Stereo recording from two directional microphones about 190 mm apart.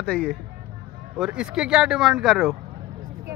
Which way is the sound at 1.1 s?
5° right (ahead or behind).